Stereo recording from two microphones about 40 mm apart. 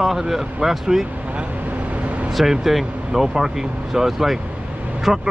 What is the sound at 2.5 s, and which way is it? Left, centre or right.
Speech, centre.